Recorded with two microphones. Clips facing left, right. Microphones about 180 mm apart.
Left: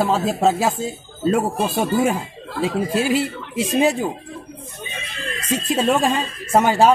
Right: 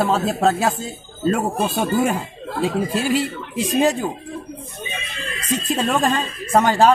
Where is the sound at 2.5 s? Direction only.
50° right (ahead or behind).